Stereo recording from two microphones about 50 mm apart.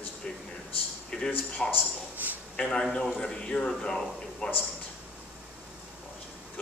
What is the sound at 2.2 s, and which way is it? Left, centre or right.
Speech, right.